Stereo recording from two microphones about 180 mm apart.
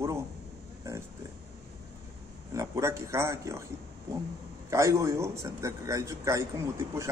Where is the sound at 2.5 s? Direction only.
15° right (ahead or behind).